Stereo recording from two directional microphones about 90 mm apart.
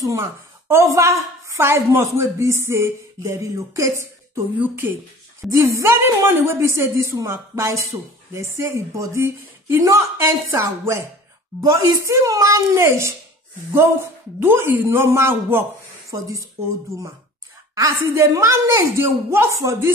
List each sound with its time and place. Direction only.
0.7 s a woman's voice: 35° right (ahead or behind)
4.6 s speech: 20° right (ahead or behind)
5.4 s a woman's voice: 35° right (ahead or behind)
14.4 s a woman's voice: 25° right (ahead or behind)
17.7 s a woman's voice: 30° right (ahead or behind)